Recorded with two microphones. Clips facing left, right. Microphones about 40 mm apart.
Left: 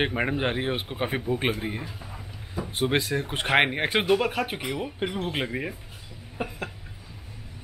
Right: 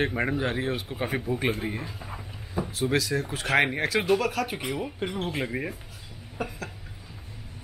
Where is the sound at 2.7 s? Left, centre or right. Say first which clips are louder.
Left 1 dB; left; by 5.8 s centre.